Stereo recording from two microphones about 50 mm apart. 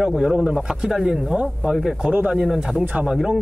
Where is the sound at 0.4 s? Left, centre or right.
Right.